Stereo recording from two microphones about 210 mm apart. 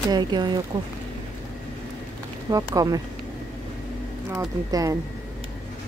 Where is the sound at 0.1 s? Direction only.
20° right (ahead or behind).